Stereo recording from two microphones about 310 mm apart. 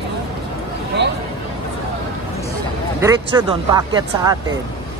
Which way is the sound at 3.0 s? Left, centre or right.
Centre.